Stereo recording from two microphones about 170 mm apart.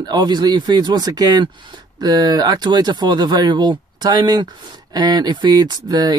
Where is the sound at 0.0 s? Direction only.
25° right (ahead or behind).